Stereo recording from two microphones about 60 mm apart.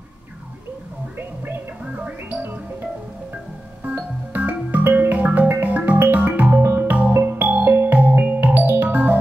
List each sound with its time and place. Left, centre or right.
2.0 s music: right
3.8 s music: right